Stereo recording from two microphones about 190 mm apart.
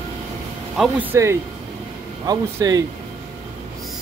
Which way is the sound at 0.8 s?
10° right (ahead or behind).